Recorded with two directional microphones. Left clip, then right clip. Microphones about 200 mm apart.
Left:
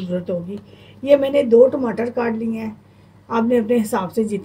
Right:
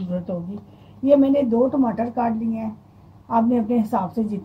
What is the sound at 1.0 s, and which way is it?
A woman's voice, 30° left (ahead or behind).